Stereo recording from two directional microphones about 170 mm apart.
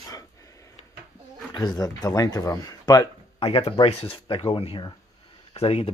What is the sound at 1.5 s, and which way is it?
Speech, 20° left (ahead or behind).